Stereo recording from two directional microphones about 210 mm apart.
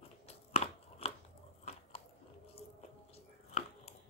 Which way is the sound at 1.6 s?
30° left (ahead or behind).